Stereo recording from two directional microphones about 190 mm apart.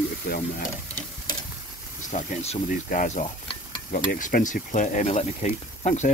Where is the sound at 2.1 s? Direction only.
40° left (ahead or behind).